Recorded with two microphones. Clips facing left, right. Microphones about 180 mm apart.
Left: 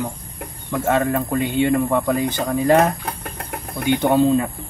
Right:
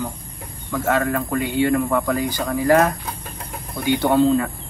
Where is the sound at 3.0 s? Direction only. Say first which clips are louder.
Left 3 dB; 70° left (ahead or behind).